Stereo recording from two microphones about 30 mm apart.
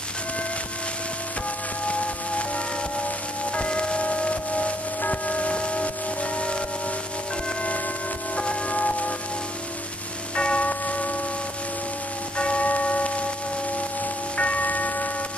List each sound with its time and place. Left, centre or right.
1.9 s music: left
3.5 s tubular bells: left
8.4 s music: left
10.3 s church bell: left
12.4 s church bell: left
14.3 s tubular bells: left
14.6 s tubular bells: left